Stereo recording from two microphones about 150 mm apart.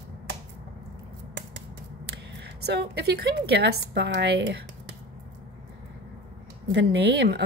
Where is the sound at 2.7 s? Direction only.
90° right.